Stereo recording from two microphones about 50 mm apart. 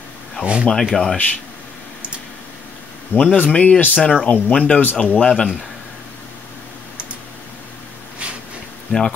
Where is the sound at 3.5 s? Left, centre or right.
Centre.